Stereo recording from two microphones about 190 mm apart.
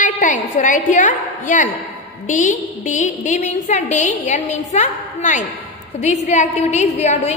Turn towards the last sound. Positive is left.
turn(degrees=35)  # may be behind; listen again after turning